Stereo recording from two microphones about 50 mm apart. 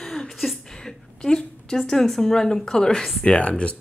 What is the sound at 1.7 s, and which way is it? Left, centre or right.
A woman's voice, centre.